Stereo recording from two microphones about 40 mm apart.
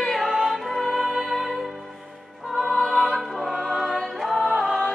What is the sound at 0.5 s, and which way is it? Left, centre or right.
Music, centre.